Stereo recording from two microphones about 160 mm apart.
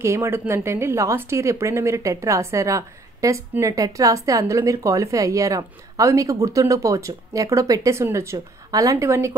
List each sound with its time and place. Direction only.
0.0 s a woman's voice: 15° right (ahead or behind)